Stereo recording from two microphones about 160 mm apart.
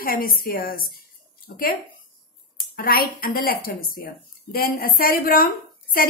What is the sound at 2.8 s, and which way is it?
A woman's voice, 65° left (ahead or behind).